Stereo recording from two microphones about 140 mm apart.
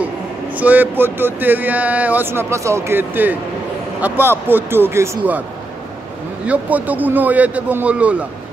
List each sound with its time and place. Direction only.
0.6 s speech: 10° right (ahead or behind)
6.4 s speech: 10° right (ahead or behind)